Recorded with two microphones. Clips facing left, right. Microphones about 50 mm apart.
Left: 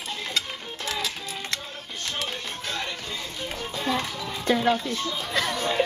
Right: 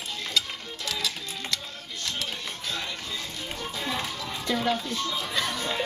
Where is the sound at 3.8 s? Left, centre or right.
Centre.